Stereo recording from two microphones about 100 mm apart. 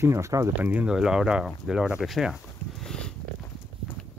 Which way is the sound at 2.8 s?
10° left (ahead or behind).